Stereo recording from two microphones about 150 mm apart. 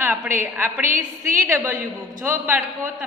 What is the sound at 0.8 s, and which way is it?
Speech, 65° right (ahead or behind).